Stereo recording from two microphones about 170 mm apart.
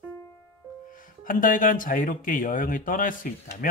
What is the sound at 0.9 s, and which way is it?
Speech, 50° left (ahead or behind).